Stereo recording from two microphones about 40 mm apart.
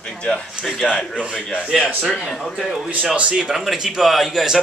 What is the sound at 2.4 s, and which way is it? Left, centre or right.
A man's voice, centre.